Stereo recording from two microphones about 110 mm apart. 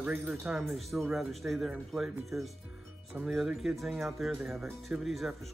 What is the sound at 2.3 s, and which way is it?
Speech, 25° right (ahead or behind).